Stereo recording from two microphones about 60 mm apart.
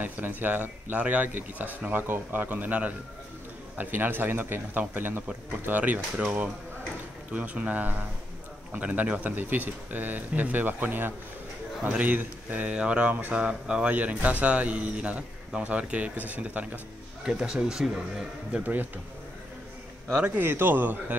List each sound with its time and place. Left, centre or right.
0.0 s speech: right
17.2 s speech: centre
20.2 s speech: right